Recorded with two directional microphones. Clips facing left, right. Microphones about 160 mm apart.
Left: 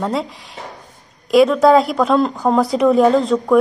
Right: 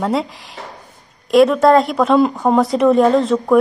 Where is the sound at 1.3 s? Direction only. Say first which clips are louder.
Even; centre (ahead or behind).